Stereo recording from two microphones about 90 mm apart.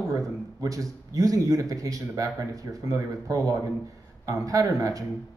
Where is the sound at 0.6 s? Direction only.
40° right (ahead or behind).